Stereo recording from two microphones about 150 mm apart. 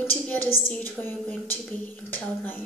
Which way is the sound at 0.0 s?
15° left (ahead or behind).